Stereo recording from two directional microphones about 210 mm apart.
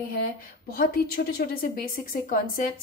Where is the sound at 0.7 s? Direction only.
45° left (ahead or behind).